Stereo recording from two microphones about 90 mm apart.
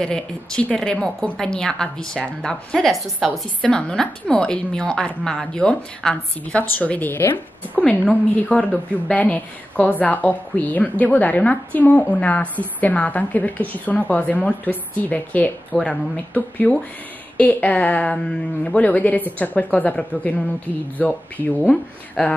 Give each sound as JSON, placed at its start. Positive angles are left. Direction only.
{"t": 0.0, "sound": "a woman's voice", "side_deg": 10}